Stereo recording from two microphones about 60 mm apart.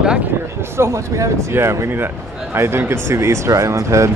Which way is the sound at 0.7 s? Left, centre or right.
Right.